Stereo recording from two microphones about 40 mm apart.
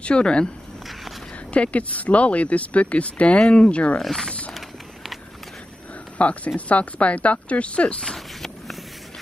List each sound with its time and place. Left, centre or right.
0.0 s speech: left
1.5 s speech: left
4.0 s speech: centre
6.1 s speech: left
8.0 s a sound: centre